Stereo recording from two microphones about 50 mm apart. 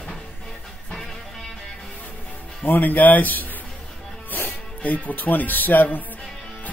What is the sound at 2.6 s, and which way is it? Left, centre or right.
Speech, left.